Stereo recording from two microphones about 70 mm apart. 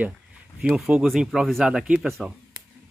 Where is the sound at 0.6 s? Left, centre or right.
Centre.